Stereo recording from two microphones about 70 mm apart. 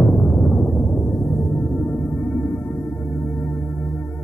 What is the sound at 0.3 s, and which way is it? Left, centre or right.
Explosion, centre.